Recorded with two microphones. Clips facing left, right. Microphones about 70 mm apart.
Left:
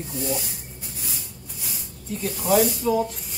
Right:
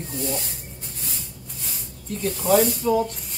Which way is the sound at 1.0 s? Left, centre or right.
Centre.